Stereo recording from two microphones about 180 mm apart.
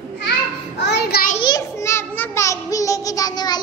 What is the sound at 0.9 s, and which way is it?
Speech, 65° left (ahead or behind).